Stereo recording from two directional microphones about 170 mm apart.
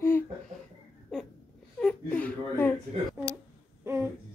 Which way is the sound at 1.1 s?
Centre (ahead or behind).